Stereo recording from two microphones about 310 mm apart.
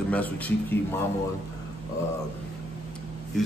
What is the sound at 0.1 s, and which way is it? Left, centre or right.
Speech, centre.